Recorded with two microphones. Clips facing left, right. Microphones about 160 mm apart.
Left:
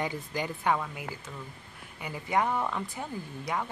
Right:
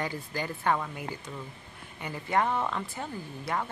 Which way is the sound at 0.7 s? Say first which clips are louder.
Right 1 dB; centre (ahead or behind).